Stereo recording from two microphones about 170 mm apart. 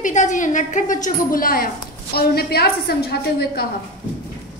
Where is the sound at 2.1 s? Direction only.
65° left (ahead or behind).